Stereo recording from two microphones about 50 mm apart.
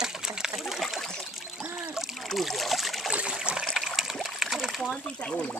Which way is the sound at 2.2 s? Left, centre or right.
Centre.